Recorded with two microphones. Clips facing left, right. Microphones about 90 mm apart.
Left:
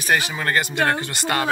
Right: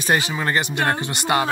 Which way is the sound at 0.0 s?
25° right (ahead or behind).